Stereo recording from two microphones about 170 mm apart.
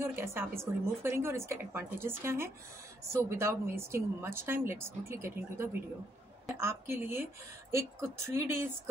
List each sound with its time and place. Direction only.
0.0 s a woman's voice: 15° right (ahead or behind)